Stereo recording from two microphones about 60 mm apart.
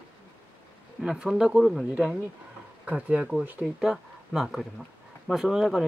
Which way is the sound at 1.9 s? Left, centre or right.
Right.